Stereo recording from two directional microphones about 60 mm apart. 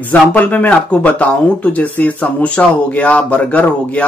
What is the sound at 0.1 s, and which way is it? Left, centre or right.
Speech, left.